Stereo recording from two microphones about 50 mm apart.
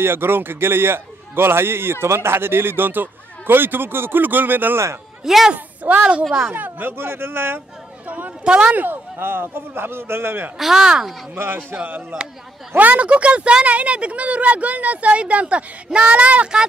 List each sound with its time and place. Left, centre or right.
0.0 s a man's voice: right
5.2 s speech: centre
5.9 s a woman's voice: right
8.5 s speech: right
8.7 s a man's voice: right
10.6 s speech: centre
11.3 s speech: right